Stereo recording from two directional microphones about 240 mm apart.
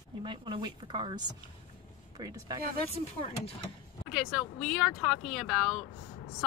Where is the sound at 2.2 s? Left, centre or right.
Centre.